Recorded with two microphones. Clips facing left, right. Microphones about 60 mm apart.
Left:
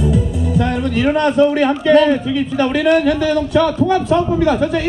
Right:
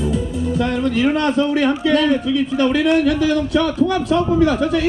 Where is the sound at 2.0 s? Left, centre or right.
Left.